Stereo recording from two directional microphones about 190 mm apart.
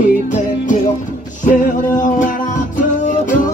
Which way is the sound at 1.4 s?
40° left (ahead or behind).